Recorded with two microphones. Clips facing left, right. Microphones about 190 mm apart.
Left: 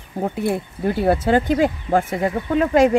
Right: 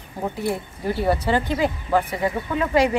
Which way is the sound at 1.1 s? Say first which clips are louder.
Left 5 dB; 50° left (ahead or behind).